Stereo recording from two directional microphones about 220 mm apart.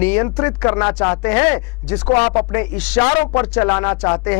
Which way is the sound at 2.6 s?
10° left (ahead or behind).